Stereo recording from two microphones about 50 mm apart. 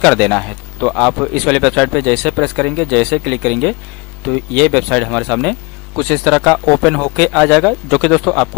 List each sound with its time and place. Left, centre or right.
0.0 s a man's voice: centre